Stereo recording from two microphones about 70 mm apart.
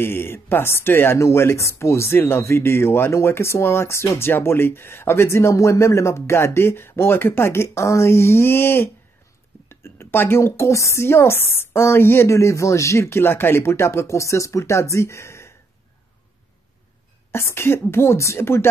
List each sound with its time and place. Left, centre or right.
0.0 s speech: left
17.3 s speech: left